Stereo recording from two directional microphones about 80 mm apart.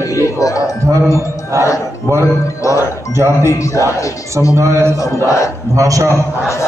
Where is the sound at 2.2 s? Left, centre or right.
Left.